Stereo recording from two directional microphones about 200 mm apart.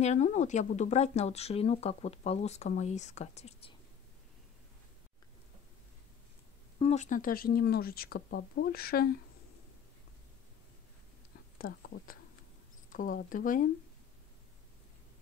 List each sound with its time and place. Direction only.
0.0 s speech: 35° left (ahead or behind)
6.8 s speech: 35° left (ahead or behind)
11.5 s speech: 45° left (ahead or behind)